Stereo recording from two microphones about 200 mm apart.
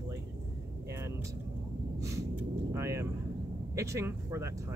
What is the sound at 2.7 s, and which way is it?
Speech, 15° right (ahead or behind).